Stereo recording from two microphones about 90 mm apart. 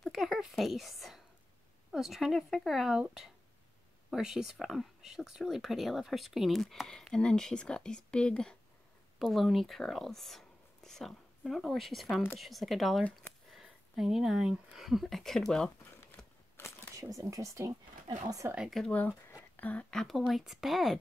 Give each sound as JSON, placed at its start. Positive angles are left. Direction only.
{"t": 0.0, "sound": "a sound", "side_deg": 5}
{"t": 0.4, "sound": "speech", "side_deg": 0}
{"t": 16.2, "sound": "a sound", "side_deg": 10}
{"t": 16.6, "sound": "camera", "side_deg": 25}
{"t": 16.9, "sound": "speech", "side_deg": -35}
{"t": 18.9, "sound": "speech", "side_deg": 20}